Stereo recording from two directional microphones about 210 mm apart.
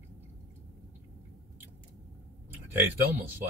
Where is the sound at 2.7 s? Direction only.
10° right (ahead or behind).